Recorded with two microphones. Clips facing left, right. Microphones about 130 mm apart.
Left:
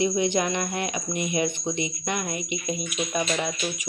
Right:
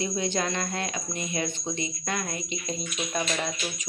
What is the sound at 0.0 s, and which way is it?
Speech, 15° left (ahead or behind).